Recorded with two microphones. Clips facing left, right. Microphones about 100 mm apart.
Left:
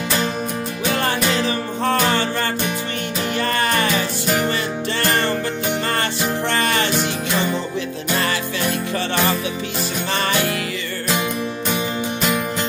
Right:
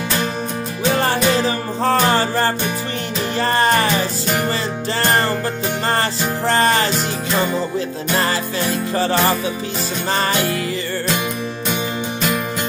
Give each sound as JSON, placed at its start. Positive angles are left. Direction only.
{"t": 0.8, "sound": "music", "side_deg": -30}
{"t": 5.9, "sound": "music", "side_deg": -35}
{"t": 8.2, "sound": "music", "side_deg": -35}